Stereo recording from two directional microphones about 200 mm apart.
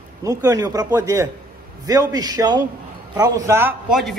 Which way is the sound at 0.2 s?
15° right (ahead or behind).